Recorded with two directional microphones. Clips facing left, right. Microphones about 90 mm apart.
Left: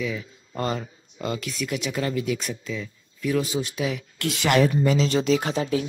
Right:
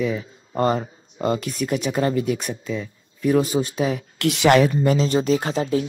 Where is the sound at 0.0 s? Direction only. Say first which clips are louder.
Right 5 dB; 35° right (ahead or behind).